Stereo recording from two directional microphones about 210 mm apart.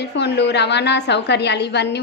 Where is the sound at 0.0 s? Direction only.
55° left (ahead or behind).